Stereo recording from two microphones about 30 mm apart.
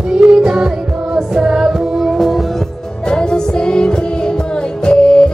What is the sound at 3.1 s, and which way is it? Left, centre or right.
Music, left.